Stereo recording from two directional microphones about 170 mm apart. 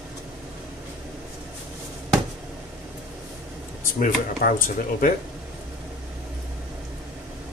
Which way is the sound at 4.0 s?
55° left (ahead or behind).